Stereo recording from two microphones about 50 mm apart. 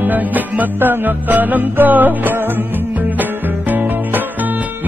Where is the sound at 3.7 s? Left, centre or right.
Right.